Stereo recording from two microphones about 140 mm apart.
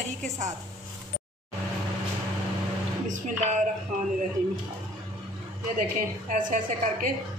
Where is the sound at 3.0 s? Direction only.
65° right (ahead or behind).